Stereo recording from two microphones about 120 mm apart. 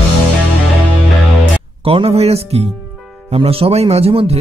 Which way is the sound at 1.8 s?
55° right (ahead or behind).